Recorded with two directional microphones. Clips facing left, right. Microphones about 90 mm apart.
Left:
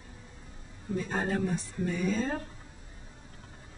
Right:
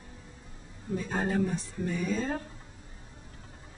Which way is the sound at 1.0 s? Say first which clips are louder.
Right 1 dB; centre (ahead or behind).